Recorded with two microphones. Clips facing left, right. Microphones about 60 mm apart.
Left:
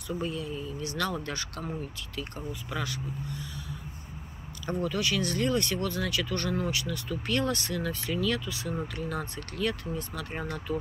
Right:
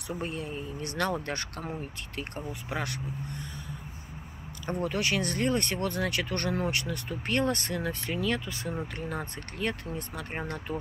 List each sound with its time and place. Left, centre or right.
0.2 s speech: right
4.6 s speech: right